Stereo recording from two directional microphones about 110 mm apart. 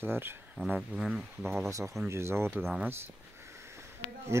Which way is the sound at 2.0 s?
25° right (ahead or behind).